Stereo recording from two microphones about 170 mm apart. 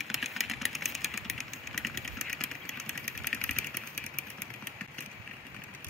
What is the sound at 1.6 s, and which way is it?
Engine, centre (ahead or behind).